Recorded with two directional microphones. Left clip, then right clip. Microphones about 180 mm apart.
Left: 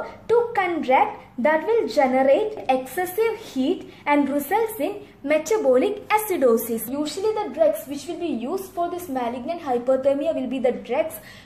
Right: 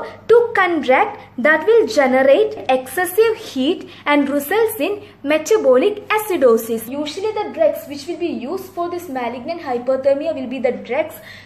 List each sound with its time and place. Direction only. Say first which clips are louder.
0.0 s a woman's voice: right 7 dB; 30° right (ahead or behind)
6.9 s a woman's voice: right 2 dB; centre (ahead or behind)